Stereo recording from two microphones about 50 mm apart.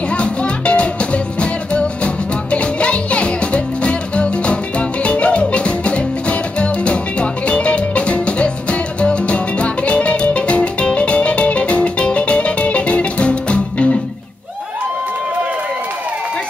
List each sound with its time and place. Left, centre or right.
0.1 s music: left